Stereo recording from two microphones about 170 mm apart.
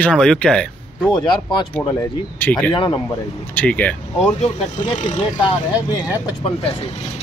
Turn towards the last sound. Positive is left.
turn(degrees=35)  # may be behind; listen again after turning